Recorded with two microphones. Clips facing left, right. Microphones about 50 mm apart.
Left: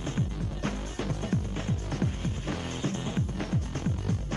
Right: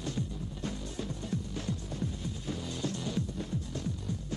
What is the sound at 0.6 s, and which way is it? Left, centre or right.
Music, left.